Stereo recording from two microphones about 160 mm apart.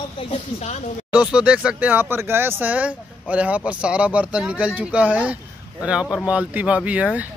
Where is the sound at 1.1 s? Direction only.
10° right (ahead or behind).